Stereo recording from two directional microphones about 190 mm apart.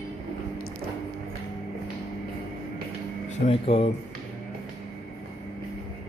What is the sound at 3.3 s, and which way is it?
Speech, 30° left (ahead or behind).